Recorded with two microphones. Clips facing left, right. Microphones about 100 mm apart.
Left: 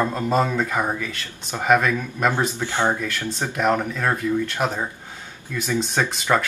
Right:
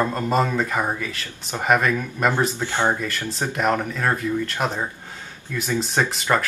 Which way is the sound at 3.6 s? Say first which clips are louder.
Left 1 dB; centre (ahead or behind).